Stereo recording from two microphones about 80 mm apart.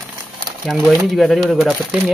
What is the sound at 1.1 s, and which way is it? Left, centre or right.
Speech, centre.